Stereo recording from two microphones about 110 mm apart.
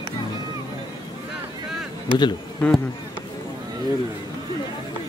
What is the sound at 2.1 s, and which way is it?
Speech, 45° left (ahead or behind).